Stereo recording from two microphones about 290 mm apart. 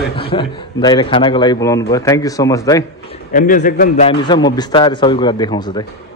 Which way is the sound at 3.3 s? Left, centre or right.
Left.